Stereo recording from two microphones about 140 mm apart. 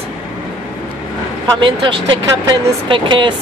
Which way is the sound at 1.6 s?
35° right (ahead or behind).